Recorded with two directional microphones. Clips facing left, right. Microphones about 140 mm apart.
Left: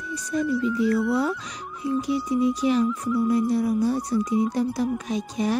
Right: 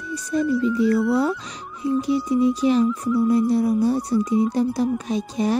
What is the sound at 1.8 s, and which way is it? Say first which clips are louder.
Music: right 4 dB; 30° right (ahead or behind).